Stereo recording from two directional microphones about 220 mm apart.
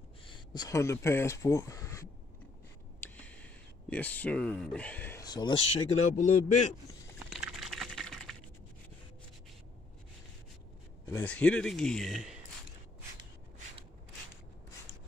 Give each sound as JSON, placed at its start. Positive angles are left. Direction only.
{"t": 0.3, "sound": "speech", "side_deg": 20}
{"t": 3.0, "sound": "a sound", "side_deg": 5}
{"t": 6.1, "sound": "speech", "side_deg": 35}
{"t": 7.2, "sound": "typing", "side_deg": -5}
{"t": 11.1, "sound": "a man's voice", "side_deg": 10}